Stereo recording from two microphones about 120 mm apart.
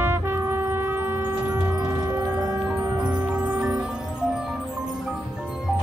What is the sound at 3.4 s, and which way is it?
Music, 10° right (ahead or behind).